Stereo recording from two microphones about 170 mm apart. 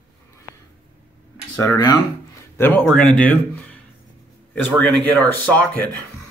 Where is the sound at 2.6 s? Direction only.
10° left (ahead or behind).